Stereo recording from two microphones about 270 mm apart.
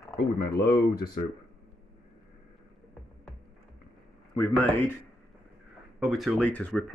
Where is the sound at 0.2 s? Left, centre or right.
Left.